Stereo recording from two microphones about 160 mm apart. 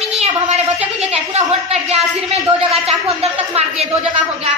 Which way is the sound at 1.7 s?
40° right (ahead or behind).